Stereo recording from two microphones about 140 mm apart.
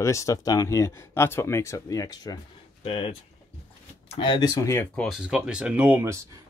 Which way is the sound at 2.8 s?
45° left (ahead or behind).